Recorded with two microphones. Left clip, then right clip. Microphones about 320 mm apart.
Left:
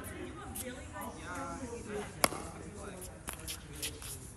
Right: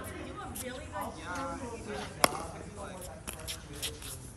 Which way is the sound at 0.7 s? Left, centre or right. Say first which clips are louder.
Right 6 dB; right.